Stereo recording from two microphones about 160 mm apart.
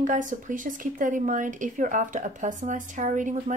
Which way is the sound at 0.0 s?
50° right (ahead or behind).